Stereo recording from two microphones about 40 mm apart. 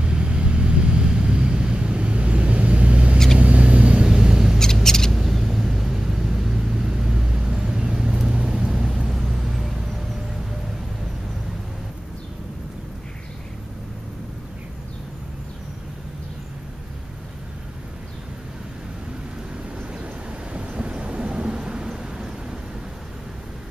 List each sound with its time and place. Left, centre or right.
0.0 s vehicle: right
4.1 s mouse: centre
4.8 s owl: centre
5.1 s vehicle: centre
8.1 s vehicle: right
9.1 s vehicle: centre
20.5 s thunder: right